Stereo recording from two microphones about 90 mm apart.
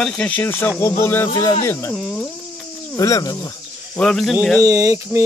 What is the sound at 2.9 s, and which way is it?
Speech, 40° left (ahead or behind).